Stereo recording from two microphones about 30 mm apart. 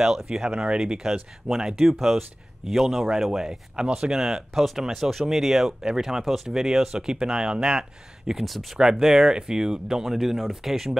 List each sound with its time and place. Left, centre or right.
0.0 s speech: right
0.5 s speech: right
0.7 s speech: right; by 3.1 s centre
3.3 s speech: right
4.6 s speech: centre
4.8 s speech: centre
5.6 s speech: centre
8.5 s speech: centre
8.7 s speech: right
10.1 s speech: centre